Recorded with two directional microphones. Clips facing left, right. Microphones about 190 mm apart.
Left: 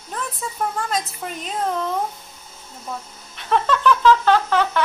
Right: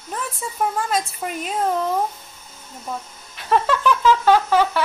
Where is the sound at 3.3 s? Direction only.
5° right (ahead or behind).